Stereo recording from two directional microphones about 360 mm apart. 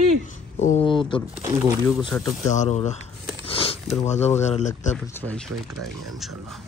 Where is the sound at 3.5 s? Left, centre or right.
Centre.